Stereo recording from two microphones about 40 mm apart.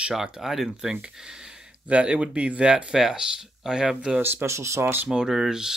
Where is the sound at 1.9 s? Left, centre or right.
Right.